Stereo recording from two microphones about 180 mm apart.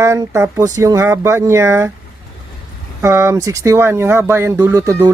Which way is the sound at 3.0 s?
15° right (ahead or behind).